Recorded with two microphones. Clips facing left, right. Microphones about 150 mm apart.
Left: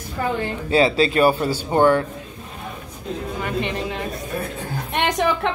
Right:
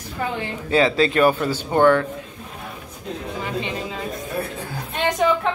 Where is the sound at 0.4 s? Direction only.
35° left (ahead or behind).